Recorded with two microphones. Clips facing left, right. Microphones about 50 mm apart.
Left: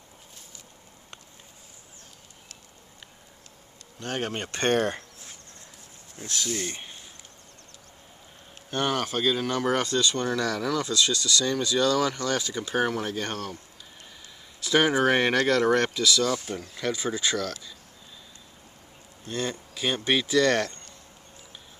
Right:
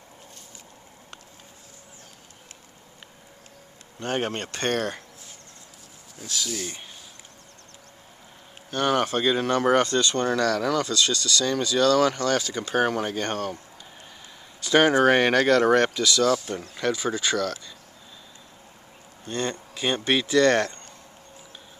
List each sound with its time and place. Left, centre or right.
4.0 s speech: centre
4.5 s speech: left
6.1 s speech: left
8.9 s speech: centre
14.6 s speech: centre
19.2 s speech: centre